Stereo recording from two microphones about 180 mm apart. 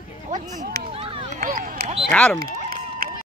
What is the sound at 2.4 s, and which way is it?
Run, 55° right (ahead or behind).